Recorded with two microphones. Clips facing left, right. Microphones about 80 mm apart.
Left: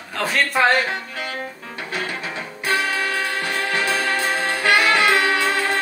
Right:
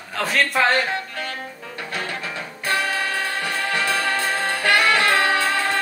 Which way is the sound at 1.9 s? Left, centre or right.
Centre.